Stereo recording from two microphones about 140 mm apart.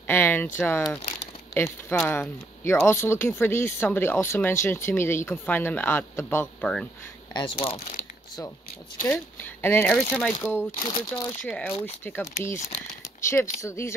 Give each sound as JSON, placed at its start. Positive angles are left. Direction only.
{"t": 0.0, "sound": "a sound", "side_deg": 15}
{"t": 0.6, "sound": "speech", "side_deg": 15}
{"t": 7.3, "sound": "speech", "side_deg": 40}
{"t": 9.1, "sound": "speech", "side_deg": 15}
{"t": 10.8, "sound": "speech", "side_deg": 35}
{"t": 11.4, "sound": "speech", "side_deg": 10}